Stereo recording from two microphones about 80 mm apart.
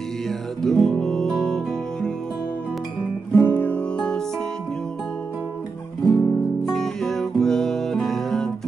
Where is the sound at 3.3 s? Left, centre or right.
Left.